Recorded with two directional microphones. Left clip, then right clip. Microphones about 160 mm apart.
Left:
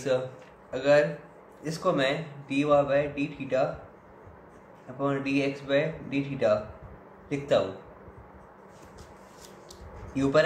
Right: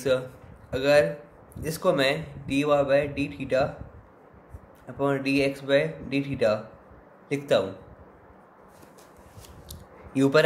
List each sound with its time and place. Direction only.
0.7 s speech: 60° right (ahead or behind)
4.9 s a man's voice: 70° right (ahead or behind)
9.7 s scissors: 70° right (ahead or behind)